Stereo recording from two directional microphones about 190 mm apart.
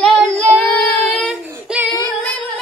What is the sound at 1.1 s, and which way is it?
Child singing, centre (ahead or behind).